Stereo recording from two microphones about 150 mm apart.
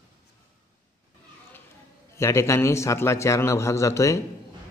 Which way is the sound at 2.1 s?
20° left (ahead or behind).